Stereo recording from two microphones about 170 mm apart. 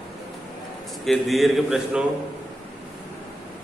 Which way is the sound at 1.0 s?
Centre (ahead or behind).